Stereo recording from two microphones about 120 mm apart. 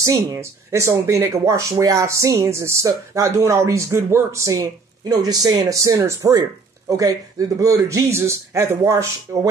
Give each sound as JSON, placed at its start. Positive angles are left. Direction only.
{"t": 0.0, "sound": "speech", "side_deg": -30}